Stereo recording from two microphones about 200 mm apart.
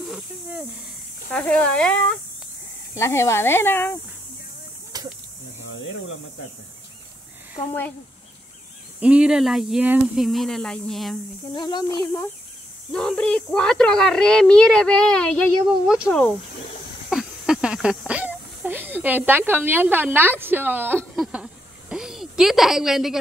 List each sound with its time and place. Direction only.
0.1 s a child's voice: 5° right (ahead or behind)
4.9 s a sound: 20° right (ahead or behind)
9.0 s a child's voice: 5° right (ahead or behind)
11.5 s speech: 20° left (ahead or behind)
12.0 s a child's voice: 10° left (ahead or behind)
17.1 s speech: 5° right (ahead or behind)
21.0 s a sound: 5° right (ahead or behind)